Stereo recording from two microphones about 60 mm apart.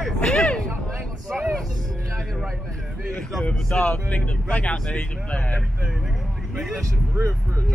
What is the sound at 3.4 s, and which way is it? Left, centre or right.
Speech, left.